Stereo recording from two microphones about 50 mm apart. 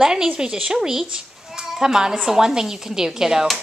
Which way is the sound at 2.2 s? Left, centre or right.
Centre.